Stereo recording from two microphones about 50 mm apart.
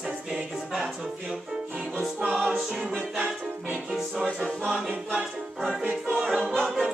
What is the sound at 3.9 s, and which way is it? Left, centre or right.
Music, centre.